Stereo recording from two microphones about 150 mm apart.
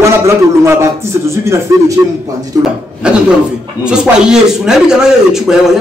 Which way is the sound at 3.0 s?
5° right (ahead or behind).